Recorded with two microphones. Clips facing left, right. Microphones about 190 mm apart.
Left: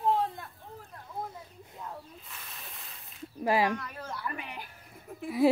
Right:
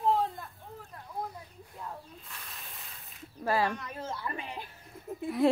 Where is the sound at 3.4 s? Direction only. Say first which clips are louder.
Left 2 dB; 15° left (ahead or behind).